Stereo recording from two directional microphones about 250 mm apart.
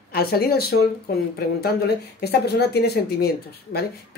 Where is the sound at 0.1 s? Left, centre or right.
Left.